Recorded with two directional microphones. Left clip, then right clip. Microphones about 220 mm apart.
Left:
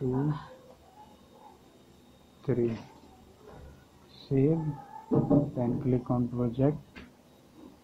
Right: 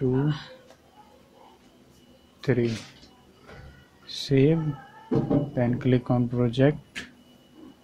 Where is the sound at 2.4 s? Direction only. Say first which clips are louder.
Right 4 dB; 50° right (ahead or behind).